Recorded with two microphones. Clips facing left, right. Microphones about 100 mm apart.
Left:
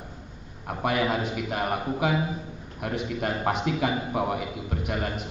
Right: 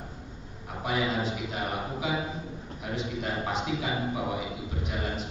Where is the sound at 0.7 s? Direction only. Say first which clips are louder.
Left 4 dB; 60° left (ahead or behind).